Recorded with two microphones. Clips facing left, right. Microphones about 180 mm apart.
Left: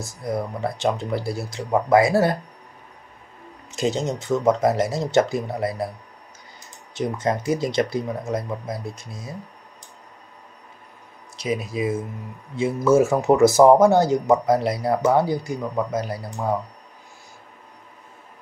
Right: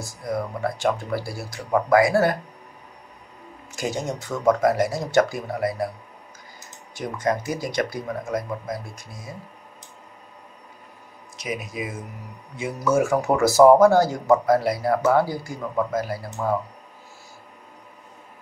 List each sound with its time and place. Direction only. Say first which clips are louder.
0.0 s speech: left 1 dB; 25° left (ahead or behind)
3.7 s speech: left 4 dB; 25° left (ahead or behind)
6.9 s speech: left 1 dB; 25° left (ahead or behind)
11.3 s speech: left 5 dB; 30° left (ahead or behind)